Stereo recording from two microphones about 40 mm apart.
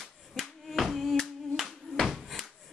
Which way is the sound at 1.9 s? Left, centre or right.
Centre.